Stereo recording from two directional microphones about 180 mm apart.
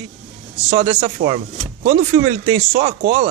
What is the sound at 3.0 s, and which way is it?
Speech, 55° right (ahead or behind).